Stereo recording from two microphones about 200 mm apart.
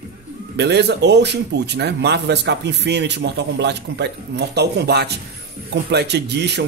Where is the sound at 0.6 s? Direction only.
55° right (ahead or behind).